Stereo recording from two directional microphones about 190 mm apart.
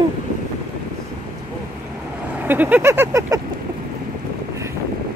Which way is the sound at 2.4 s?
10° right (ahead or behind).